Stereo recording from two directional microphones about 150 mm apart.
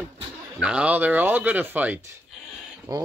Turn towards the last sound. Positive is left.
turn(degrees=-25)  # may be behind; listen again after turning